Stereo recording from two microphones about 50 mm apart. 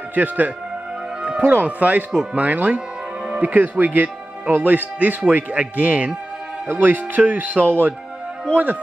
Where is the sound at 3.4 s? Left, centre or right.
Right.